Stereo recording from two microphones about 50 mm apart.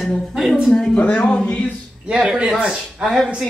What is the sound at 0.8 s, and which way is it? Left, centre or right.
Speech, left.